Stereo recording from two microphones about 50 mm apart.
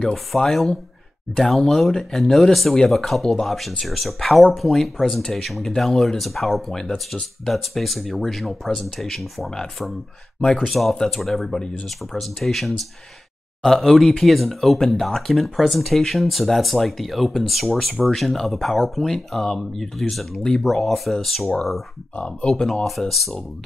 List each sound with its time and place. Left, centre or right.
0.0 s speech: centre
6.7 s speech: centre
7.1 s speech: centre
10.7 s speech: centre
22.1 s speech: left
22.8 s speech: centre